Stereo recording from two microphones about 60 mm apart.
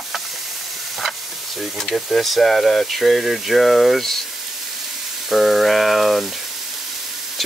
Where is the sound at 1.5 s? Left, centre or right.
Centre.